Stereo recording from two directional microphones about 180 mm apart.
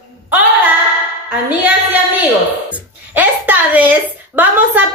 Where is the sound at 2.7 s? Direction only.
10° right (ahead or behind).